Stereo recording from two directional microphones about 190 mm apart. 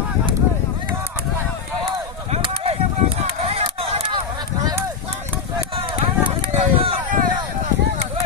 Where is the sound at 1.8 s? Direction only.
30° right (ahead or behind).